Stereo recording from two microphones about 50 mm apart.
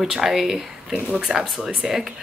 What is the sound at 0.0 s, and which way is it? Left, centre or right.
Speech, centre.